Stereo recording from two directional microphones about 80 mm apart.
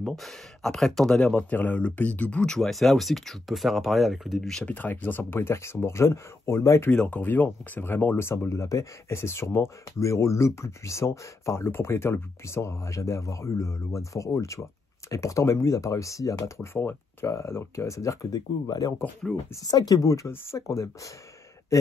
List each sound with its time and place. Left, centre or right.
0.0 s speech: centre
1.5 s speech: centre
2.5 s speech: centre
4.6 s speech: left
7.0 s speech: centre; by 21.1 s left